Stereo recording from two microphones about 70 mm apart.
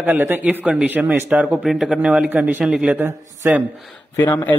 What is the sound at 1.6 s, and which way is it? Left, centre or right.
Speech, centre.